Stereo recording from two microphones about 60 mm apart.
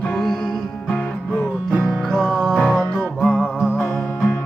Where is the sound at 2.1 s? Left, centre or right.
Centre.